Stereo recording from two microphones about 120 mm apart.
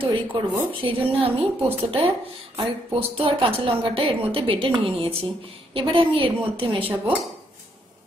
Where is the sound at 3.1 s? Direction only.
50° right (ahead or behind).